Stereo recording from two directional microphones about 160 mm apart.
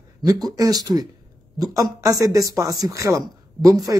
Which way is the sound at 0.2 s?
25° right (ahead or behind).